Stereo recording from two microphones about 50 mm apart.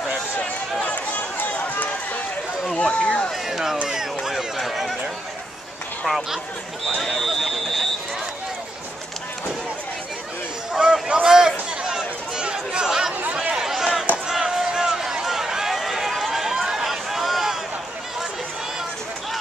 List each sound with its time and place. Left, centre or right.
0.8 s run: left
3.0 s speech: left
3.4 s speech: centre
3.9 s a sound: centre
4.6 s chatter: centre
6.0 s speech: centre
7.0 s a sound: centre
10.7 s a sound: centre
11.2 s chatter: centre
13.2 s chatter: right
13.7 s a sound: centre
14.2 s run: centre